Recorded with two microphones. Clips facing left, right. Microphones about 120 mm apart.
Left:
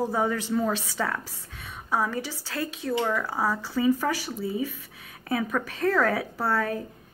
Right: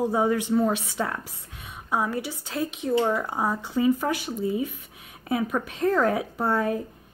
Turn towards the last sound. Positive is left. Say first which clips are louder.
# right 2 dB
turn(degrees=-20)  # may be behind; listen again after turning